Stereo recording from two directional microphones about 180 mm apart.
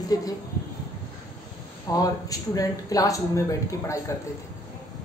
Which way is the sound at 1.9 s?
20° left (ahead or behind).